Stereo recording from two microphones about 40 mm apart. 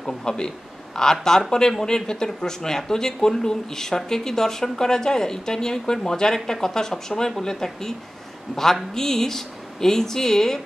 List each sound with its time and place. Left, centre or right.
0.0 s speech: centre
8.9 s speech: centre